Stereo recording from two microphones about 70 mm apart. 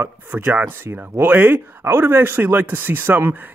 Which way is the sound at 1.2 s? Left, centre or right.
Right.